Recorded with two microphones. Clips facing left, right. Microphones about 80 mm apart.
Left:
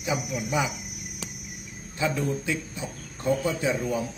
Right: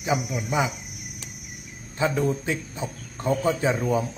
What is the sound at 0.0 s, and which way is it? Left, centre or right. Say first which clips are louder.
Speech: right 3 dB; right.